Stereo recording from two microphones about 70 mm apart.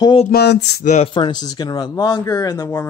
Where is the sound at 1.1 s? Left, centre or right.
Left.